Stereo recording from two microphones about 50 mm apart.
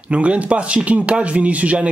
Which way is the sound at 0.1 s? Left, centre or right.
Right.